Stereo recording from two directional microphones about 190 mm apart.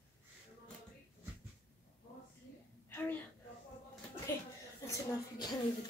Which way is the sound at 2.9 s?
10° left (ahead or behind).